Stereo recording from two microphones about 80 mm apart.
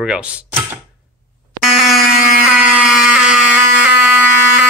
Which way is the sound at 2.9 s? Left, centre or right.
Centre.